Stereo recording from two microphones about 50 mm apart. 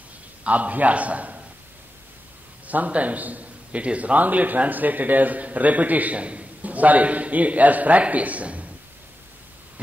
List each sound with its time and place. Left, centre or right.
0.4 s a man's voice: right
2.7 s a man's voice: right